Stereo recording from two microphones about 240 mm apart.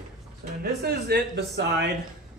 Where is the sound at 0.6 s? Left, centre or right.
Right.